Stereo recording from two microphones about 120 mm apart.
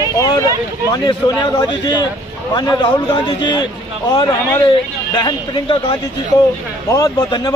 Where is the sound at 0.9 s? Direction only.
35° left (ahead or behind).